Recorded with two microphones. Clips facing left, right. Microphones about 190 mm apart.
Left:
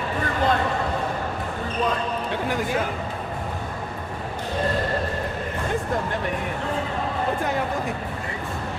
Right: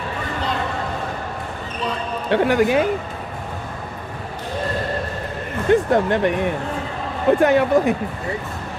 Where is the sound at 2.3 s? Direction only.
70° right (ahead or behind).